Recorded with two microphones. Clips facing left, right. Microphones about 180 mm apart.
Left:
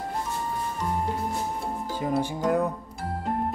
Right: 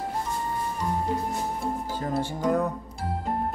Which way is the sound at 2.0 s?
15° left (ahead or behind).